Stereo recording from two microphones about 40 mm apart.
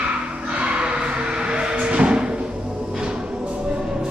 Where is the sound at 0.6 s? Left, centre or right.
Right.